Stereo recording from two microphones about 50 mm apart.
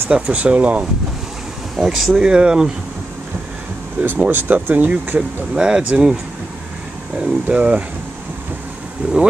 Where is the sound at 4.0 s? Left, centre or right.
Right.